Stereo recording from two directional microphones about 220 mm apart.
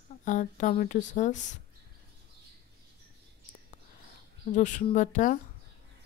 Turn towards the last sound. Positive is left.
turn(degrees=35)  # may be behind; listen again after turning